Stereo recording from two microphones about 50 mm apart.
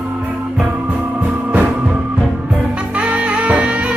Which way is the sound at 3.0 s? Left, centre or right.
Right.